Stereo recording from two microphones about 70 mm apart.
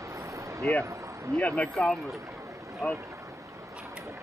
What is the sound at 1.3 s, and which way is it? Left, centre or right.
Speech, centre.